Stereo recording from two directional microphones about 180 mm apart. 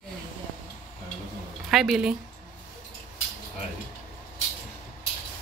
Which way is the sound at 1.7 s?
Centre (ahead or behind).